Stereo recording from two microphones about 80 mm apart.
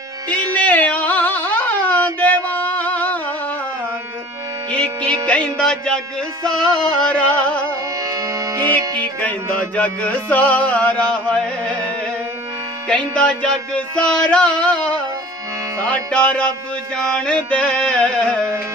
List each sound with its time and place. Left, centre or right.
0.6 s a sound: centre
4.6 s music: centre
8.6 s music: centre
12.8 s music: centre